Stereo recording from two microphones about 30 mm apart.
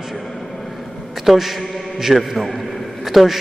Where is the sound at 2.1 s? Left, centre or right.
Centre.